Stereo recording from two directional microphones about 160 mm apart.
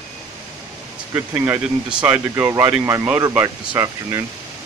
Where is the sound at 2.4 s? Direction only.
20° right (ahead or behind).